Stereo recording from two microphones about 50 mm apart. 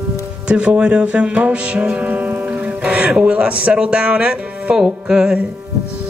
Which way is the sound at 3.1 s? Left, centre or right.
Centre.